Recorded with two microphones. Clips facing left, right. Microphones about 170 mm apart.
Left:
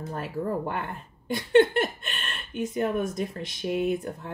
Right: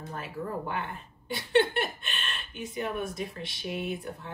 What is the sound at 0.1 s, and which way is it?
Speech, 40° left (ahead or behind).